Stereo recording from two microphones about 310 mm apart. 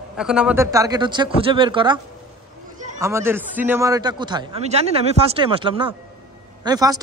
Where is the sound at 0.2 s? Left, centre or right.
Centre.